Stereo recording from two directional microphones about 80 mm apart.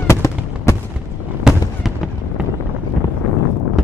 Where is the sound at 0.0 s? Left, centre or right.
Left.